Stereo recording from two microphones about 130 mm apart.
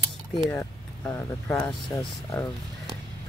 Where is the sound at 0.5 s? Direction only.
20° left (ahead or behind).